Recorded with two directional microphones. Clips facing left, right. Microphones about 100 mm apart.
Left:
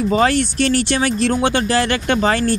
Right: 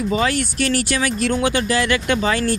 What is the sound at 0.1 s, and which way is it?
Speech, 35° left (ahead or behind).